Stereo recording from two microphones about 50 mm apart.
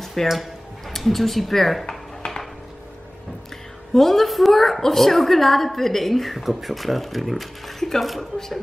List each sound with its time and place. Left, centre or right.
0.0 s a woman's voice: centre
1.9 s dishes: centre
3.9 s a woman's voice: centre